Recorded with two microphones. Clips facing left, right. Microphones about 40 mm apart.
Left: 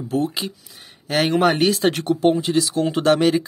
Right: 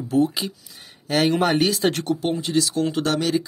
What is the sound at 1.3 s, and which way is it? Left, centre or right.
Speech, centre.